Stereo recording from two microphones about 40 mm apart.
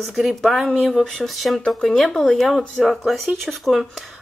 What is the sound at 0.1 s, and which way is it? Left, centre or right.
Speech, centre.